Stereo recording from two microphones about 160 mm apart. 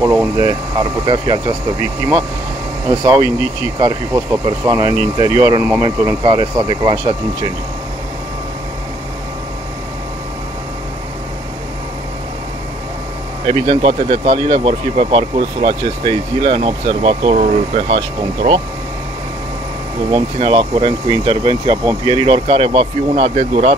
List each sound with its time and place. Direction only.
0.0 s speech: 10° right (ahead or behind)
0.4 s speech: 25° right (ahead or behind)
2.9 s speech: 25° right (ahead or behind)
13.5 s speech: 40° right (ahead or behind)
20.1 s speech: 30° right (ahead or behind)
23.3 s speech: 45° right (ahead or behind)